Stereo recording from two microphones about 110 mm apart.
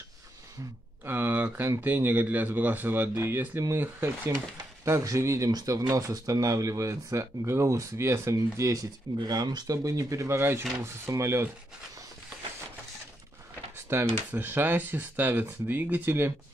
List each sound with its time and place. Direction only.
1.0 s speech: 20° right (ahead or behind)
13.8 s speech: 20° right (ahead or behind)